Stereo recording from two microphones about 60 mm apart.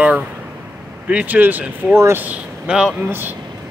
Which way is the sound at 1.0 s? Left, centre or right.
Right.